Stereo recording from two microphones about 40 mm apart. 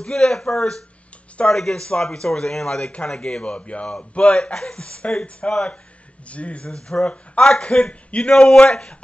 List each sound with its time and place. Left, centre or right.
0.0 s a man's voice: centre
2.9 s a man's voice: left